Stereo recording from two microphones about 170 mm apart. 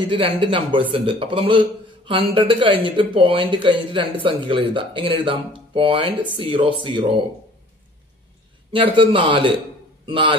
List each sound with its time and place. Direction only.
0.1 s a man's voice: 30° right (ahead or behind)
8.7 s a man's voice: 30° right (ahead or behind)